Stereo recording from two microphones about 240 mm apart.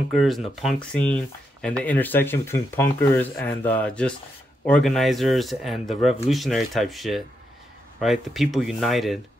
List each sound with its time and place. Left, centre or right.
0.1 s speech: centre